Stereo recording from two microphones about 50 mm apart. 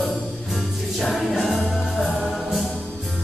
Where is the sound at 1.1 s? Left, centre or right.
Centre.